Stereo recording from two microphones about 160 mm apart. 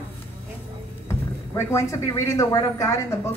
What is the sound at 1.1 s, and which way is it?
Speech, 20° left (ahead or behind).